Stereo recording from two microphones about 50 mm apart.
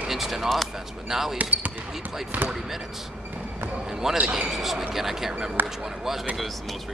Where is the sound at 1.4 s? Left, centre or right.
Right.